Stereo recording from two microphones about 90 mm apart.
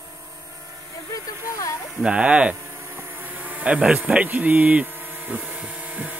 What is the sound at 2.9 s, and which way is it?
Insect, 20° right (ahead or behind).